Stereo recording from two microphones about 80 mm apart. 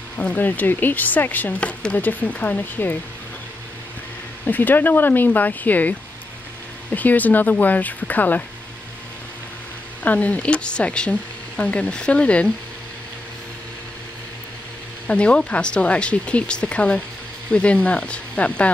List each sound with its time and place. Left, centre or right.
0.2 s speech: centre
4.5 s speech: left
10.0 s speech: centre
15.0 s speech: centre